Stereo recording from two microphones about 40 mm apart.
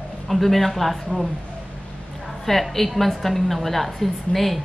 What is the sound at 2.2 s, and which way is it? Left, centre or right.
A woman's voice, centre.